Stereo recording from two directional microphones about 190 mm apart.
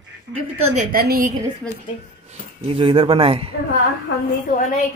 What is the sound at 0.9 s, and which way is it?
Speech, 50° right (ahead or behind).